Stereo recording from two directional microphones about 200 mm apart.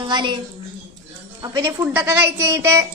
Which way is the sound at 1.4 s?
20° right (ahead or behind).